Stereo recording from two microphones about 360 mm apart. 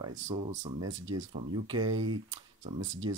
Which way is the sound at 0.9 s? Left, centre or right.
Right.